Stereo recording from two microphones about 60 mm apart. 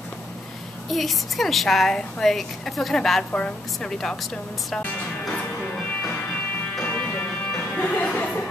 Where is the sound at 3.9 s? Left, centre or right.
Centre.